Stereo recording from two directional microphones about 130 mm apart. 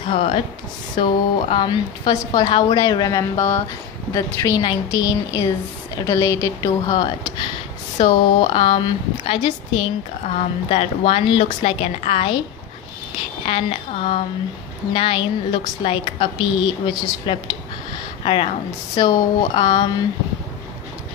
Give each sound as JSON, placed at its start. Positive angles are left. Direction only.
{"t": 0.0, "sound": "a woman's voice", "side_deg": 40}
{"t": 13.5, "sound": "a woman's voice", "side_deg": 45}